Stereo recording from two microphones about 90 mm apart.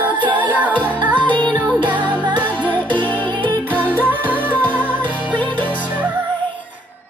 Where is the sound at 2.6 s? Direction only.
20° left (ahead or behind).